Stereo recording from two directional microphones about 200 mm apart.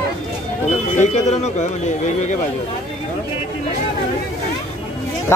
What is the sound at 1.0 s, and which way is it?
Speech, 35° left (ahead or behind).